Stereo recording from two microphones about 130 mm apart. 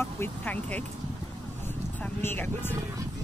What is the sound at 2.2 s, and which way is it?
Speech, 15° left (ahead or behind).